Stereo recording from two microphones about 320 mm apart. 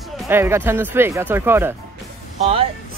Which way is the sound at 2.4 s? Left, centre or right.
Centre.